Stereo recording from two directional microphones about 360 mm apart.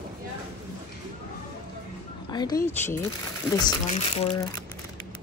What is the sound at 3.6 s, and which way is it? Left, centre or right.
Speech, centre.